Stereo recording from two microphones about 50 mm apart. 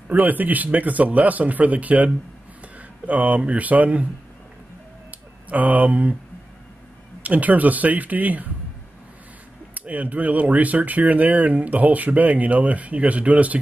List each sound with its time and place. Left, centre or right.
0.1 s speech: right
3.1 s speech: right
5.5 s speech: right
7.2 s speech: right
9.8 s speech: right